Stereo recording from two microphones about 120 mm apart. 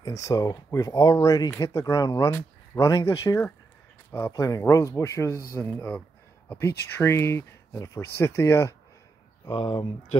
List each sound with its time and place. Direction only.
0.2 s speech: 30° left (ahead or behind)
9.5 s speech: 45° left (ahead or behind)